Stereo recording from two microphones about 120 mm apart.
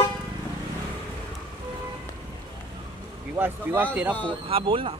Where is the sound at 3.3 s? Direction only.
20° right (ahead or behind).